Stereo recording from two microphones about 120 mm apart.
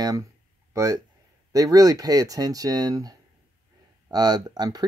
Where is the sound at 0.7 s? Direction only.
25° right (ahead or behind).